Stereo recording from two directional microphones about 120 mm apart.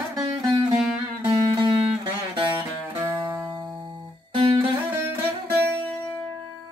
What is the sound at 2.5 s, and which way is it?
Music, 20° right (ahead or behind).